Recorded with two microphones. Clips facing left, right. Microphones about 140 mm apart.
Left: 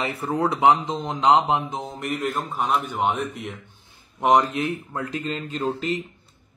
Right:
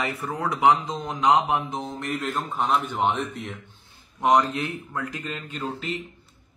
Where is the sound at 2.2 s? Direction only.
10° left (ahead or behind).